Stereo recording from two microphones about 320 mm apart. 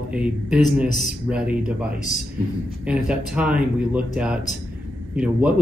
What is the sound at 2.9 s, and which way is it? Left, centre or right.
Speech, centre.